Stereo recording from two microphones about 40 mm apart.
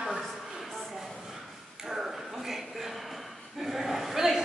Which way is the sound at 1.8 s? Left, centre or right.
Centre.